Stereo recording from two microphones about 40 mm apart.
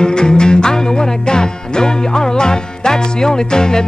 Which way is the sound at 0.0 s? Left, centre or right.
Left.